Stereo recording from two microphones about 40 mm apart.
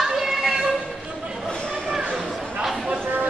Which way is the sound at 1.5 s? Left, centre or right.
Left.